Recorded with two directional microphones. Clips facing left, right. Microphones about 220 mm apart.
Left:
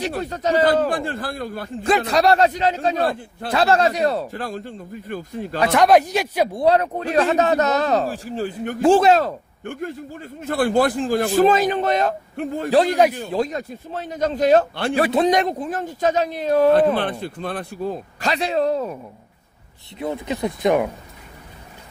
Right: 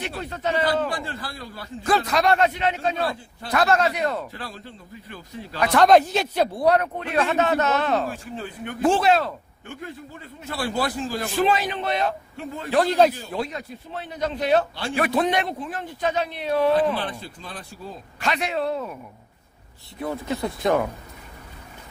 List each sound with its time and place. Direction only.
0.1 s speech: 40° left (ahead or behind)
1.8 s a man's voice: 25° left (ahead or behind)
3.1 s speech: 55° left (ahead or behind)
3.5 s speech: 30° left (ahead or behind); by 5.6 s 50° left (ahead or behind)
5.8 s speech: 10° left (ahead or behind)
6.6 s a man's voice: 30° left (ahead or behind); by 12.7 s 45° left (ahead or behind)
12.7 s speech: 15° left (ahead or behind)
13.4 s speech: 45° left (ahead or behind)
15.0 s a man's voice: 25° left (ahead or behind)
15.2 s speech: 40° left (ahead or behind)
16.7 s speech: 60° left (ahead or behind)
18.2 s a man's voice: 35° left (ahead or behind)
20.0 s speech: 20° left (ahead or behind)